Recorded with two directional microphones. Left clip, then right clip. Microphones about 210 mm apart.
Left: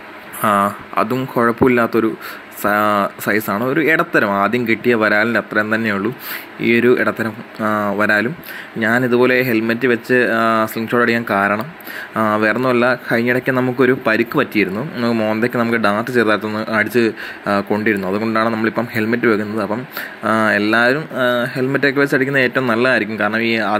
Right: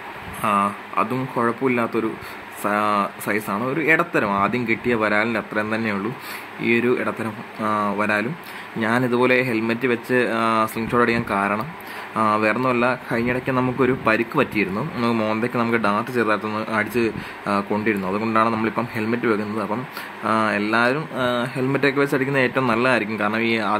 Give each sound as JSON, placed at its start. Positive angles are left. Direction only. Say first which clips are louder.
{"t": 0.4, "sound": "a man's voice", "louder": "left 5 dB", "side_deg": 20}